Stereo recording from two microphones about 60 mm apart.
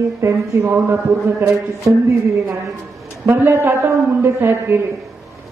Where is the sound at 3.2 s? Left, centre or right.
Right.